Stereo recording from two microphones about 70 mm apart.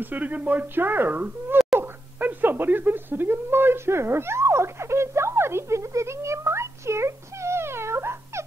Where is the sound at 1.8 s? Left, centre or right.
Right.